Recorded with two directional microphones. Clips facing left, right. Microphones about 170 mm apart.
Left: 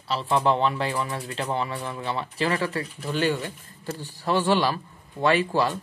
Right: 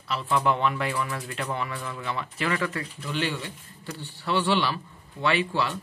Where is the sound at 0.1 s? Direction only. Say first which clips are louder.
Left 2 dB; 30° left (ahead or behind).